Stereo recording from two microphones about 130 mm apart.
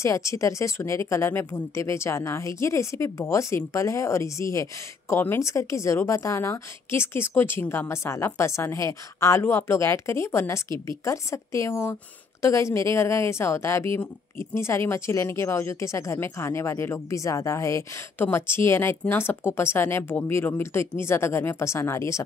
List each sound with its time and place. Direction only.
0.0 s speech: 25° left (ahead or behind)